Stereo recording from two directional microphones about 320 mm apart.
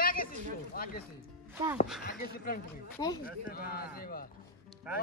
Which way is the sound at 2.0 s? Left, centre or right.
Left.